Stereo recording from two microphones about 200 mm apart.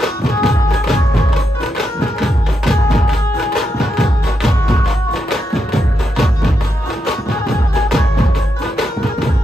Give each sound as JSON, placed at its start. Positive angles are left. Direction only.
{"t": 0.4, "sound": "music", "side_deg": 0}